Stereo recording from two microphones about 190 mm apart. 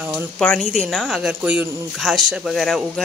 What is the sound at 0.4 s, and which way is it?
Speech, 5° left (ahead or behind).